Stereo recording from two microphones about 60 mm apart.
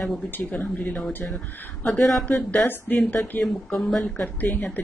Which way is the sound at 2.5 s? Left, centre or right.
Left.